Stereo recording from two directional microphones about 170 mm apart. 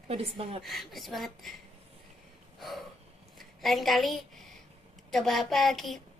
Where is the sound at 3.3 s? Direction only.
Centre (ahead or behind).